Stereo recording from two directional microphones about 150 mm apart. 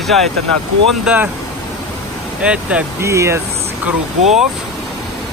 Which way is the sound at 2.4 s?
10° right (ahead or behind).